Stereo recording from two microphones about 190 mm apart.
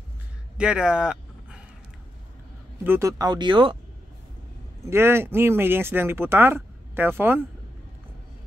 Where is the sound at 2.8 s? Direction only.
15° right (ahead or behind).